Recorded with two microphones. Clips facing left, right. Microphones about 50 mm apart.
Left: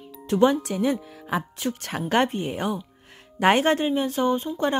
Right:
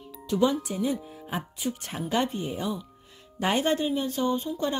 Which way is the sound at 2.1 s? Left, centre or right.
Left.